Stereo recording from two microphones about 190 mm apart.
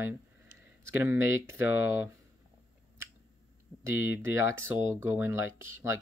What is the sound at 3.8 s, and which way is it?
Speech, 15° right (ahead or behind).